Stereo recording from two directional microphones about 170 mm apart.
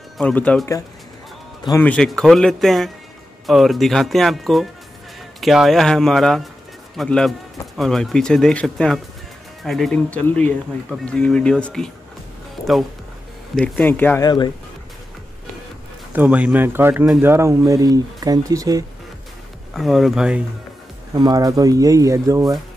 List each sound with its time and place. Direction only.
0.2 s speech: 10° left (ahead or behind)
1.8 s speech: 5° left (ahead or behind)
13.6 s speech: 10° left (ahead or behind)
14.2 s speech: 25° left (ahead or behind)
16.2 s speech: 10° right (ahead or behind)
19.7 s speech: centre (ahead or behind)
21.1 s speech: 20° right (ahead or behind)